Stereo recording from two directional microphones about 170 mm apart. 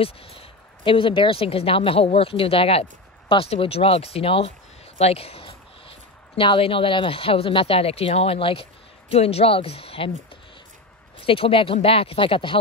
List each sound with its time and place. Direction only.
0.0 s a woman's voice: 35° left (ahead or behind)
4.9 s a sound: 35° left (ahead or behind)
6.3 s a woman's voice: 30° left (ahead or behind)